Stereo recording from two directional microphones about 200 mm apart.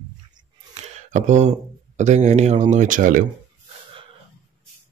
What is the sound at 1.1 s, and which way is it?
Speech, 35° right (ahead or behind).